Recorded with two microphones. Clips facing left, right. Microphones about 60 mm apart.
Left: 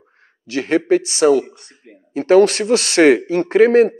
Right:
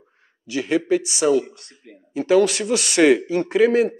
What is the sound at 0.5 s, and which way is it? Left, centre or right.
Speech, left.